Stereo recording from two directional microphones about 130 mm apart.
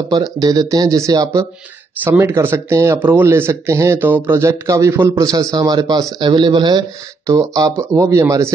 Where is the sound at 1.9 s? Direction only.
15° right (ahead or behind).